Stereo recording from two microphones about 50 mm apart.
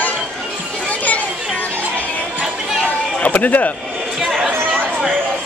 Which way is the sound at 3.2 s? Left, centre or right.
Left.